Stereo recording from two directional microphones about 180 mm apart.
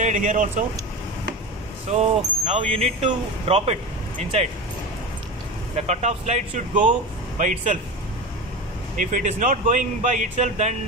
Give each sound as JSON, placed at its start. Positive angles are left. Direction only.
{"t": 0.0, "sound": "speech", "side_deg": -45}
{"t": 1.9, "sound": "speech", "side_deg": -35}
{"t": 5.8, "sound": "speech", "side_deg": -40}
{"t": 8.9, "sound": "speech", "side_deg": -45}